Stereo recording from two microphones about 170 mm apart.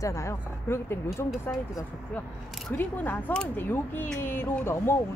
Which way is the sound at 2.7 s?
10° left (ahead or behind).